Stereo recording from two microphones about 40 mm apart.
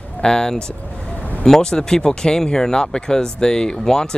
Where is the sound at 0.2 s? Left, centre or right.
Centre.